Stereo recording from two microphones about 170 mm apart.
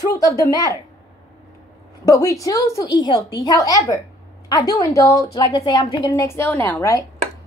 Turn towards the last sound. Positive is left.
turn(degrees=20)  # may be behind; listen again after turning